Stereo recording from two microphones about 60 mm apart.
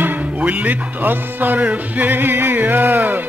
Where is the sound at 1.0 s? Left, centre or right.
Right.